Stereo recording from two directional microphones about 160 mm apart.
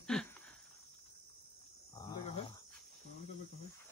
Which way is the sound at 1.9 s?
25° left (ahead or behind).